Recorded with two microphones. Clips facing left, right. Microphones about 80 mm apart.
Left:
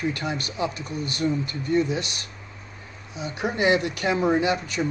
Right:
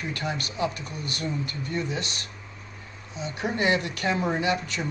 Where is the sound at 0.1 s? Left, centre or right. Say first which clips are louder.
Left 2 dB; left.